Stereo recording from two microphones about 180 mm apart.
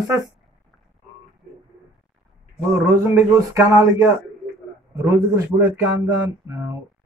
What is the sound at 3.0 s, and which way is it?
Speech, 15° right (ahead or behind).